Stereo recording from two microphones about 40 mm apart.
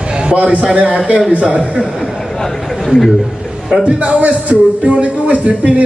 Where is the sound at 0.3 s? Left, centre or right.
Right.